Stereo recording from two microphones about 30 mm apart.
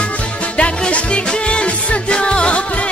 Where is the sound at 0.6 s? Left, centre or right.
Left.